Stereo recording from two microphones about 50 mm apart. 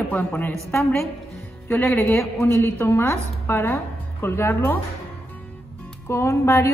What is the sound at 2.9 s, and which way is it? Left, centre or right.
A woman's voice, left.